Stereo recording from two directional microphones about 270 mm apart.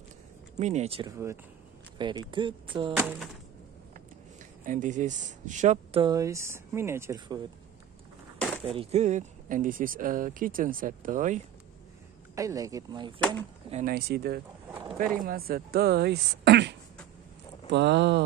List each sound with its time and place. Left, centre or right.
0.6 s speech: right
4.6 s speech: right
8.6 s speech: right
12.4 s speech: centre
13.7 s speech: right
14.7 s bird: centre
15.0 s speech: right